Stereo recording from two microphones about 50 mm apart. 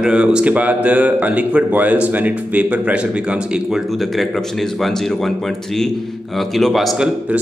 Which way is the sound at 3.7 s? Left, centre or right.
Centre.